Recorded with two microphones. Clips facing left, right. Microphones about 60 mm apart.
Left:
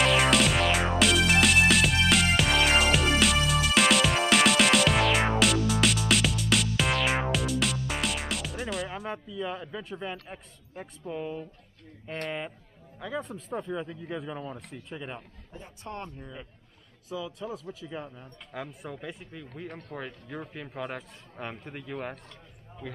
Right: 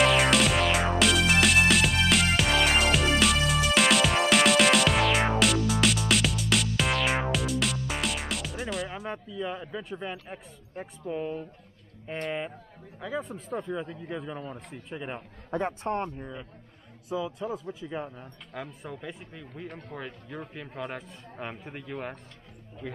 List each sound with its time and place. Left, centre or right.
0.0 s music: centre
12.1 s a man's voice: centre
15.0 s speech: centre
18.5 s a man's voice: centre